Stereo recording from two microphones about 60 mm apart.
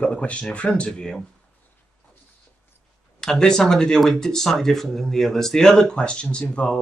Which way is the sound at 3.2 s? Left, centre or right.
Centre.